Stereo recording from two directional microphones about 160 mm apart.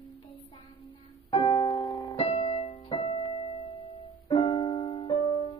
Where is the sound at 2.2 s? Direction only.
40° left (ahead or behind).